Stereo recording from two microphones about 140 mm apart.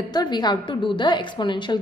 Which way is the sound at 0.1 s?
30° left (ahead or behind).